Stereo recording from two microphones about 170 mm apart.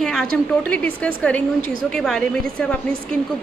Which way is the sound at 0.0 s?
Centre (ahead or behind).